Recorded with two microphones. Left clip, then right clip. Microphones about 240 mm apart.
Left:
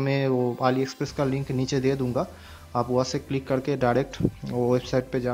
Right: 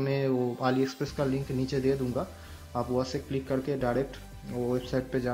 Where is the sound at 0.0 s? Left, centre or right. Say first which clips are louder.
Left 4 dB; left.